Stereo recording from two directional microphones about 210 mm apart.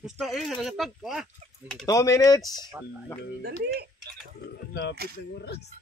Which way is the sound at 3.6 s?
50° right (ahead or behind).